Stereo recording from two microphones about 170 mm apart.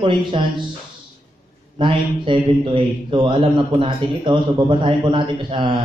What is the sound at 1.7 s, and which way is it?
A man's voice, 30° right (ahead or behind).